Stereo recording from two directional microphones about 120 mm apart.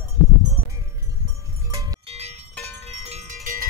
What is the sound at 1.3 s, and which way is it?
Music, 25° right (ahead or behind).